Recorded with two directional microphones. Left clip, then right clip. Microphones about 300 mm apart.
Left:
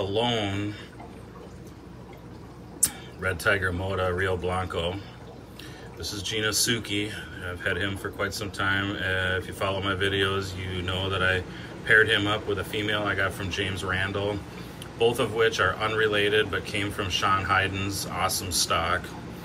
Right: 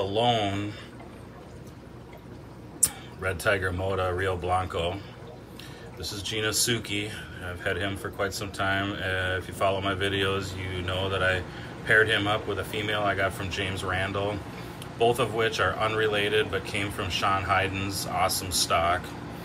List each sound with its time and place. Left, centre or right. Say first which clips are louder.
0.0 s speech: right 2 dB; centre
2.8 s speech: left 1 dB; centre